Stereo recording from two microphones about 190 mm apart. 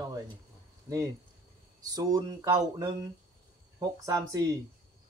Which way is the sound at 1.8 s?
20° right (ahead or behind).